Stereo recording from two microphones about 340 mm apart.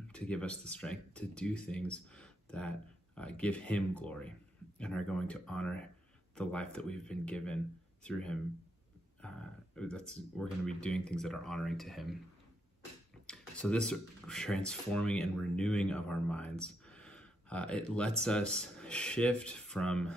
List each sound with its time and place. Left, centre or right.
0.1 s speech: centre
13.3 s speech: centre